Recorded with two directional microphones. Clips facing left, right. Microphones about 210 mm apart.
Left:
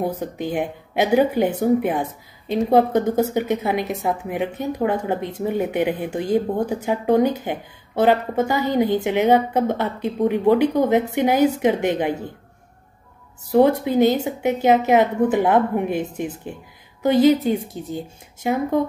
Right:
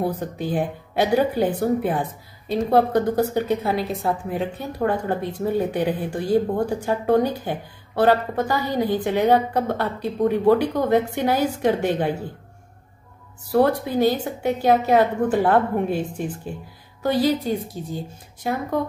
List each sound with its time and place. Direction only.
0.0 s a woman's voice: 15° left (ahead or behind)
13.5 s a woman's voice: 20° left (ahead or behind)